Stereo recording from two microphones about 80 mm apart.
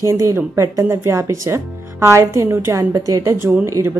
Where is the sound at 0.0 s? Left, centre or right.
Right.